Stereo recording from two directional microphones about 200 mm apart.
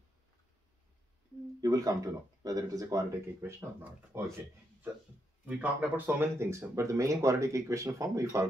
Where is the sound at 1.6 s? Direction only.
15° right (ahead or behind).